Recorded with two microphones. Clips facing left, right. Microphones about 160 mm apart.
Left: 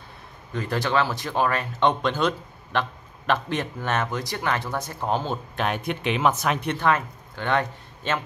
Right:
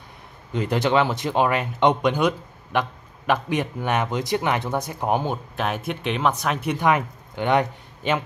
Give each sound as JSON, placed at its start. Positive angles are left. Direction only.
{"t": 0.5, "sound": "speech", "side_deg": -20}
{"t": 5.6, "sound": "speech", "side_deg": 0}